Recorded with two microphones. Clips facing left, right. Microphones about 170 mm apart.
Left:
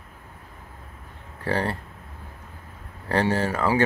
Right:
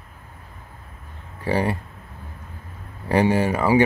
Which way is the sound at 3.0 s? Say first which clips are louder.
Right 4 dB; 15° right (ahead or behind).